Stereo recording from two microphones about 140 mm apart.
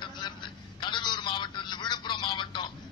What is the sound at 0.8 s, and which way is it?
Telephone, 35° left (ahead or behind).